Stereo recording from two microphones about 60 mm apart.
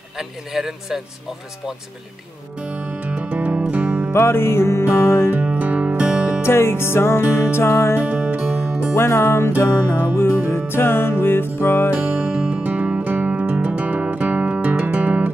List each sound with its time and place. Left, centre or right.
0.2 s speech: centre
2.7 s music: right
4.1 s music: left
5.3 s music: right
6.4 s music: left
8.0 s music: right
8.9 s music: left
11.9 s music: right
12.3 s music: centre
12.6 s music: right